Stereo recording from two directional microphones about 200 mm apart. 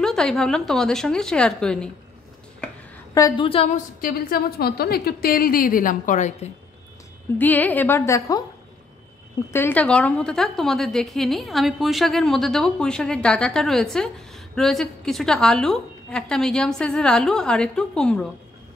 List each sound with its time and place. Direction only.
0.0 s a woman's voice: centre (ahead or behind)
3.2 s a woman's voice: 20° left (ahead or behind)
4.0 s a woman's voice: 50° left (ahead or behind)
7.3 s a woman's voice: 10° left (ahead or behind)
9.5 s a woman's voice: 10° left (ahead or behind)